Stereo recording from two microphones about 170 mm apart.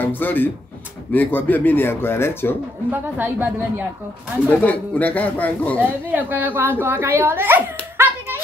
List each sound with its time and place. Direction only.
0.0 s speech: 10° left (ahead or behind)
2.9 s a woman's voice: 10° right (ahead or behind)
4.5 s speech: 10° left (ahead or behind)
5.8 s a woman's voice: 10° right (ahead or behind)
8.0 s hands: 15° right (ahead or behind)